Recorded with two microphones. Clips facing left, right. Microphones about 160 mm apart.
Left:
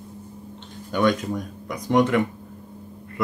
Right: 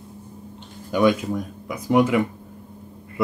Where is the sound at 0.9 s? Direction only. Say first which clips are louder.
Right 2 dB; 5° right (ahead or behind).